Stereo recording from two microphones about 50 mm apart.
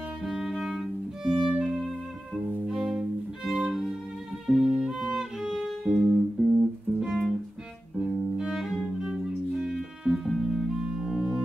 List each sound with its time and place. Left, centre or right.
0.2 s music: centre
1.3 s violin: centre
2.6 s music: centre
10.2 s music: centre
10.5 s organ: centre